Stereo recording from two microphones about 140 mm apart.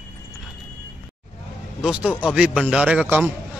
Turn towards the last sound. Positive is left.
turn(degrees=-10)  # may be behind; listen again after turning